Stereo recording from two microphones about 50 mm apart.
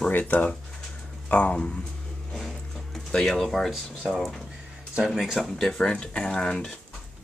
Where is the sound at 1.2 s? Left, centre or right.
Left.